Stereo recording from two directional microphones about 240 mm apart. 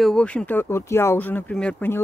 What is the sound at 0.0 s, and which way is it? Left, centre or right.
Speech, centre.